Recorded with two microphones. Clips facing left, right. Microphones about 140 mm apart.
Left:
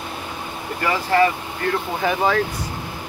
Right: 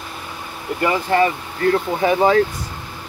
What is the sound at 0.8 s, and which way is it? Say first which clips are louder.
Speech: right 1 dB; 25° right (ahead or behind).